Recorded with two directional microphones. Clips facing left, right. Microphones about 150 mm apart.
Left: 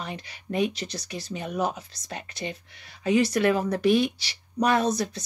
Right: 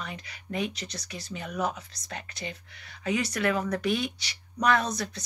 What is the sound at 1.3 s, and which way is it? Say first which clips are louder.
Speech: left 3 dB; 30° left (ahead or behind).